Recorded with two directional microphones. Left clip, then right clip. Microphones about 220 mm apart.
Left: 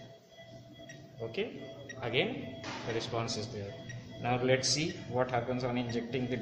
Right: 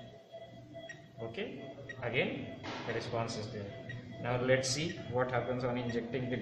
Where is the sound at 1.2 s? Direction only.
30° left (ahead or behind).